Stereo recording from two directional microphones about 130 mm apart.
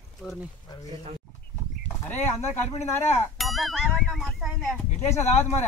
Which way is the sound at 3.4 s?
Centre (ahead or behind).